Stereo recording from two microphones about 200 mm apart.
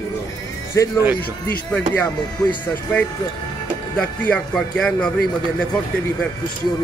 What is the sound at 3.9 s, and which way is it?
A man's voice, 5° left (ahead or behind).